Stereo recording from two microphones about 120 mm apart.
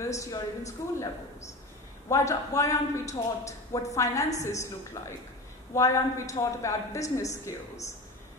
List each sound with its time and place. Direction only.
0.0 s a man's voice: 25° left (ahead or behind)